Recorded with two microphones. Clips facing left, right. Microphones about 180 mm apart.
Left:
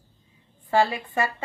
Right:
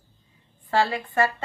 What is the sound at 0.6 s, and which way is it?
Speech, 15° left (ahead or behind).